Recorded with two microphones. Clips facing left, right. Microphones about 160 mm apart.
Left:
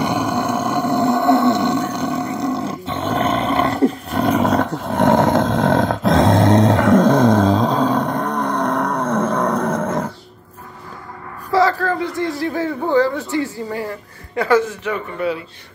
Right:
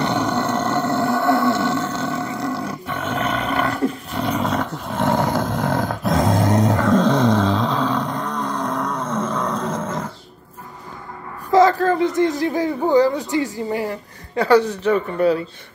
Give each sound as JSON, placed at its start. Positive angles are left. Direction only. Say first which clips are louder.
{"t": 0.0, "sound": "wild animals", "louder": "left 1 dB", "side_deg": 10}
{"t": 3.1, "sound": "roar", "louder": "left 5 dB", "side_deg": 30}
{"t": 4.1, "sound": "roar", "louder": "left 5 dB", "side_deg": 50}
{"t": 5.1, "sound": "roar", "louder": "left 5 dB", "side_deg": 20}
{"t": 5.5, "sound": "dog", "louder": "left 5 dB", "side_deg": 90}
{"t": 7.0, "sound": "a sound", "louder": "left 4 dB", "side_deg": 45}
{"t": 11.5, "sound": "a sound", "louder": "right 2 dB", "side_deg": -20}
{"t": 14.3, "sound": "a man's voice", "louder": "right 1 dB", "side_deg": -35}